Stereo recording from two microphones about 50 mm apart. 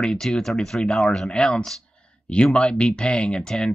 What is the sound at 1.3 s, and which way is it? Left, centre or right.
Speech, left.